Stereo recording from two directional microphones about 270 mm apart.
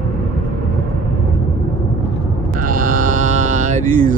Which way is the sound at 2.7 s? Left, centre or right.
Right.